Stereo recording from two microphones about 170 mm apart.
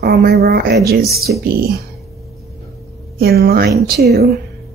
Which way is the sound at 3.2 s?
65° right (ahead or behind).